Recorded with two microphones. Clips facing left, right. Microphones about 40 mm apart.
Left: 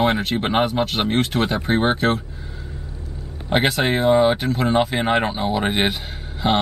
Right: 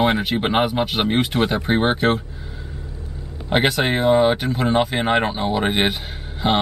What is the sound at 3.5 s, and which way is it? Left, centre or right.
Speech, centre.